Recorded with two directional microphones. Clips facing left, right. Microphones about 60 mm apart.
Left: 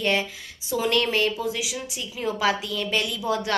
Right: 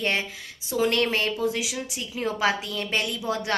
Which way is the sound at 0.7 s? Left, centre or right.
Right.